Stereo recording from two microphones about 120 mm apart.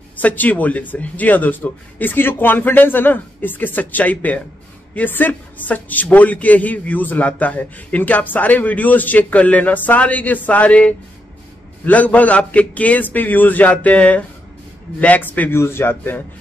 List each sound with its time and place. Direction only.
0.2 s a man's voice: 15° left (ahead or behind)